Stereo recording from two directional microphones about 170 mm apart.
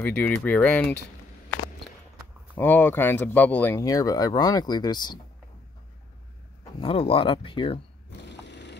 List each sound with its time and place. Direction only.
0.0 s speech: 10° left (ahead or behind)
2.5 s speech: 10° left (ahead or behind)
6.8 s speech: 35° left (ahead or behind)
8.3 s a sound: 90° left